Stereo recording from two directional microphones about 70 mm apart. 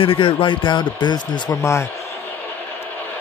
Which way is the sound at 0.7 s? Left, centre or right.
Left.